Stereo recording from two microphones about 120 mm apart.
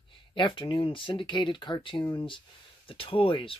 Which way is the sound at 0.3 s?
45° left (ahead or behind).